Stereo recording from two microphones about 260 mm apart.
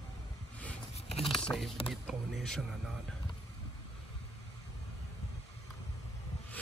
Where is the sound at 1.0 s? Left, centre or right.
Left.